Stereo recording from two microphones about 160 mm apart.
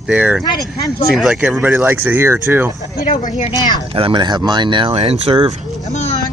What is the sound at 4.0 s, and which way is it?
Speech, 30° right (ahead or behind).